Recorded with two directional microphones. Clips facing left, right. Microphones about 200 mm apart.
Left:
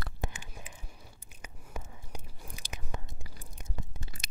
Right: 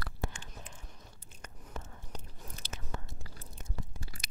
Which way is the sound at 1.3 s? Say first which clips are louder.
Left 1 dB; 10° left (ahead or behind).